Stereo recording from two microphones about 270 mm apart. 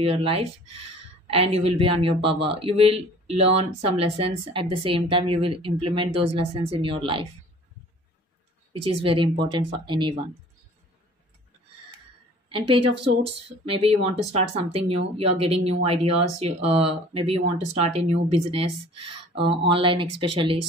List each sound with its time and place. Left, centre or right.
0.0 s speech: right
0.7 s speech: right
1.2 s speech: right
8.8 s speech: centre
12.4 s a woman's voice: centre
19.7 s speech: centre